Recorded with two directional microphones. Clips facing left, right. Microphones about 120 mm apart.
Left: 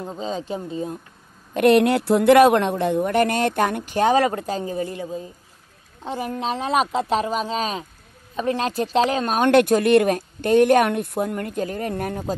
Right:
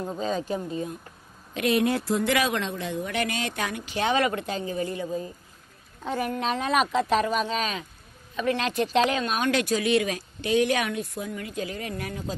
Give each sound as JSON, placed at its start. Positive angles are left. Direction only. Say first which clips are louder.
{"t": 0.0, "sound": "speech", "louder": "even", "side_deg": 25}
{"t": 1.5, "sound": "a woman's voice", "louder": "left 8 dB", "side_deg": 60}